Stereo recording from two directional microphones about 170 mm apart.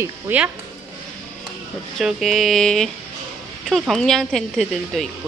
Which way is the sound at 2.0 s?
Centre (ahead or behind).